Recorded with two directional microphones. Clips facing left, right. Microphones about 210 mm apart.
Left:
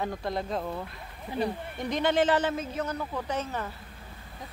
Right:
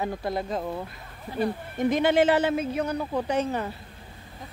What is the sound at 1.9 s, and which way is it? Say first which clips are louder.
Speech: right 4 dB; 10° right (ahead or behind).